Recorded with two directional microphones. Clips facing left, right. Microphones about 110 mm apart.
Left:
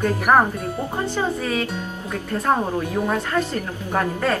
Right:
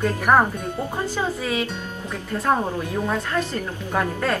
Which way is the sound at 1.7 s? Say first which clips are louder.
Left 2 dB; 5° left (ahead or behind).